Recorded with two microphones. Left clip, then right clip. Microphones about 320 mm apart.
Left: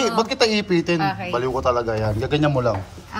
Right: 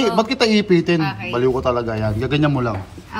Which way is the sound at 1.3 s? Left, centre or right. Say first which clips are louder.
Right 4 dB; centre.